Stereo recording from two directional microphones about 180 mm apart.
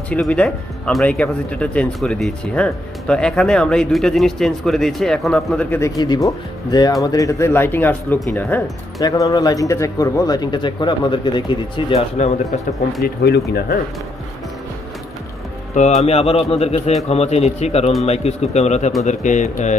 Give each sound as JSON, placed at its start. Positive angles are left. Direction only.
{"t": 0.1, "sound": "speech", "side_deg": 5}
{"t": 5.7, "sound": "speech", "side_deg": 15}
{"t": 13.0, "sound": "speech", "side_deg": 65}
{"t": 16.0, "sound": "speech", "side_deg": 35}